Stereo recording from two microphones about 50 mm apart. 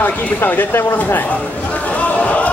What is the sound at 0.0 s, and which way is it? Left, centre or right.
Speech, left.